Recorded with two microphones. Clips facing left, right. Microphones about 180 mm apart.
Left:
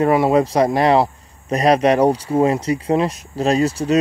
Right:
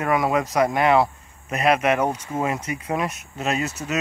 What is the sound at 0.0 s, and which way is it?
Speech, 30° left (ahead or behind).